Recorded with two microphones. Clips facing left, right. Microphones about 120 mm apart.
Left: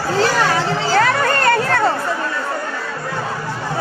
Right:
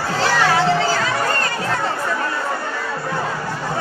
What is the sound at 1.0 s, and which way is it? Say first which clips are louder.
Chatter: left 5 dB; 65° left (ahead or behind).